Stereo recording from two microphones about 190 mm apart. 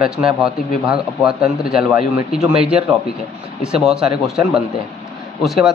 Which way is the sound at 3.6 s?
5° right (ahead or behind).